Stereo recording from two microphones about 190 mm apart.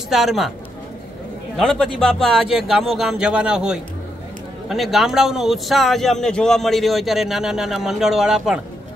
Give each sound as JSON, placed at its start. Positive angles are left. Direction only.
{"t": 0.1, "sound": "a man's voice", "side_deg": 0}
{"t": 1.6, "sound": "a man's voice", "side_deg": 5}